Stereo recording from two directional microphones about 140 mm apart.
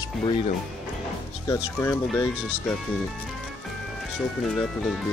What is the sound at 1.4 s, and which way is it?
Speech, 20° left (ahead or behind).